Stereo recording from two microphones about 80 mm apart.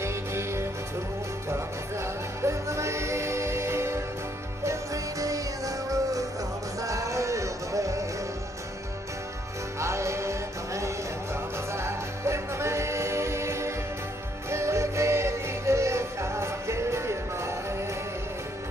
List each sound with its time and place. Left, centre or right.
0.0 s music: right
2.4 s music: right
9.8 s music: right